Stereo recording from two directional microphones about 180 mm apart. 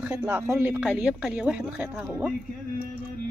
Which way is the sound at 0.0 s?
15° right (ahead or behind).